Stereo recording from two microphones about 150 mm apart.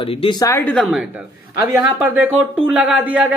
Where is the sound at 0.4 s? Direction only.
20° left (ahead or behind).